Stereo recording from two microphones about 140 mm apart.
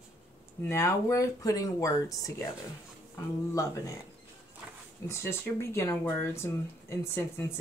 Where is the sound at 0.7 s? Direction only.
20° left (ahead or behind).